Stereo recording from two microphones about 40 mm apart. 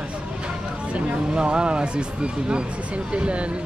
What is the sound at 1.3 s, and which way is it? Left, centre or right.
Speech, right.